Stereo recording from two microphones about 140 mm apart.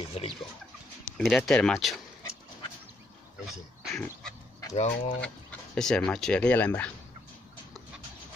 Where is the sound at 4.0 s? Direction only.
5° left (ahead or behind).